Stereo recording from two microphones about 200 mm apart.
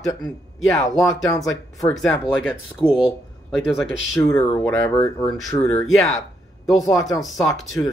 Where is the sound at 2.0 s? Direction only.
5° left (ahead or behind).